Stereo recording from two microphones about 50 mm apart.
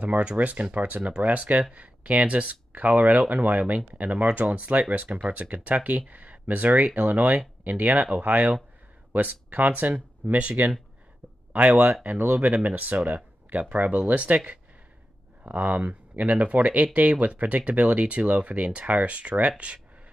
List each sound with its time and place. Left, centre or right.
0.0 s speech: right
11.5 s speech: right